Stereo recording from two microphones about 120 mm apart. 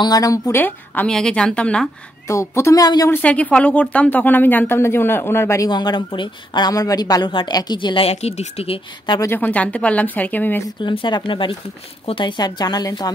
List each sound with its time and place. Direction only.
0.0 s speech: 30° left (ahead or behind)
0.6 s speech: 15° left (ahead or behind)
2.2 s speech: 25° left (ahead or behind)
3.1 s speech: 10° left (ahead or behind)
5.7 s speech: 35° left (ahead or behind)
8.1 s speech: 60° left (ahead or behind); by 9.2 s 45° left (ahead or behind)
9.2 s speech: 15° left (ahead or behind)
10.8 s speech: 40° left (ahead or behind)